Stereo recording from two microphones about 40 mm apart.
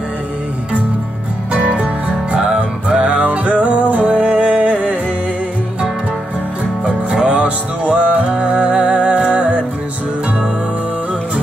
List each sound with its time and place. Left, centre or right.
1.7 s music: right
6.8 s music: right